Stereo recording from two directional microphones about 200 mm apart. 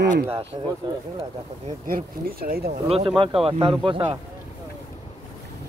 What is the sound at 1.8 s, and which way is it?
Speech, 45° right (ahead or behind).